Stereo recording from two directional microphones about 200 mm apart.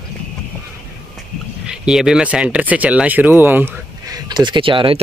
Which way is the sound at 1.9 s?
5° right (ahead or behind).